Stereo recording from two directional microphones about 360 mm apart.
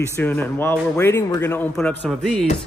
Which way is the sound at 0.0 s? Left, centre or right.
Centre.